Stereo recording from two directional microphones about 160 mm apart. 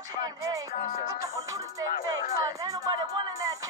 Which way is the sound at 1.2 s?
20° right (ahead or behind).